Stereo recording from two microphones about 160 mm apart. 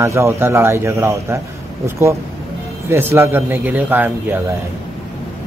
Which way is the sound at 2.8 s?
15° right (ahead or behind).